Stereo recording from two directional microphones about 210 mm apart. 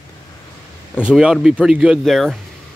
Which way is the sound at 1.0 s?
5° right (ahead or behind).